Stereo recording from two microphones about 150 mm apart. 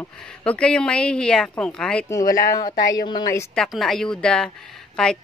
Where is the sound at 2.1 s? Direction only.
25° left (ahead or behind).